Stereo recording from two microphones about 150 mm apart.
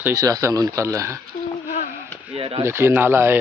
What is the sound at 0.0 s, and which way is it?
Speech, 25° right (ahead or behind).